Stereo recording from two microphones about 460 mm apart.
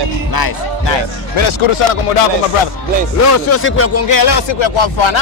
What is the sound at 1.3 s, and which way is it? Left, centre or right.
Speech, left.